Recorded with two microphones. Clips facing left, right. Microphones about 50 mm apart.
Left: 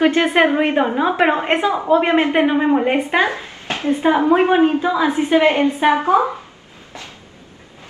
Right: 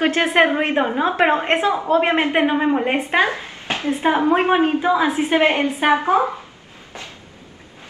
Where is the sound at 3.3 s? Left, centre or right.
Right.